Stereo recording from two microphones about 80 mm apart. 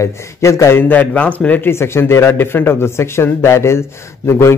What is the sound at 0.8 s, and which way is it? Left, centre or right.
A man's voice, left.